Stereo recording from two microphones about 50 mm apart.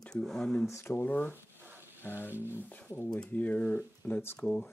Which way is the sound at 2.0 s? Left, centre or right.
Left.